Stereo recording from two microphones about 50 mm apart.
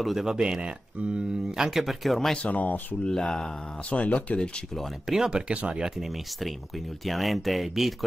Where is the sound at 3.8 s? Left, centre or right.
Left.